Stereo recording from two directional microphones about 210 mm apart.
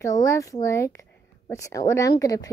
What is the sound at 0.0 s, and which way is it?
A child's voice, 15° left (ahead or behind).